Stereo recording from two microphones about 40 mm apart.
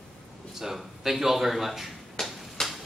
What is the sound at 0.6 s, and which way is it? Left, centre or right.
A woman's voice, centre.